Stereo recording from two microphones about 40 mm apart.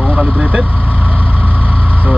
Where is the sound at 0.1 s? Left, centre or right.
Right.